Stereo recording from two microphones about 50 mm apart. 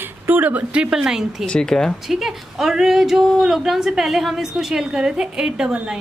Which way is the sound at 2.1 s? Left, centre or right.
Centre.